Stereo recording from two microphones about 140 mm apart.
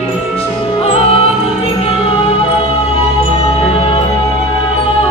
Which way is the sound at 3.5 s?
40° left (ahead or behind).